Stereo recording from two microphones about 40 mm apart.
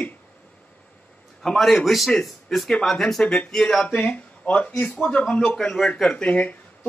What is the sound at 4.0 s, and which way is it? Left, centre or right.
Speech, left.